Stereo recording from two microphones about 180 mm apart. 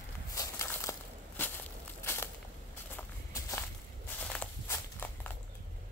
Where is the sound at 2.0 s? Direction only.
15° left (ahead or behind).